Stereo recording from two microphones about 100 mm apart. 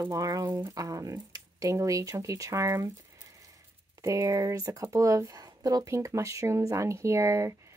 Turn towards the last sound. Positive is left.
turn(degrees=-30)  # may be behind; listen again after turning